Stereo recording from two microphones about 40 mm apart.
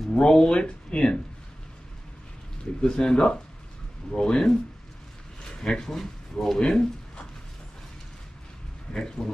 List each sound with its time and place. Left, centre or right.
0.1 s speech: left
2.8 s speech: centre
8.9 s speech: centre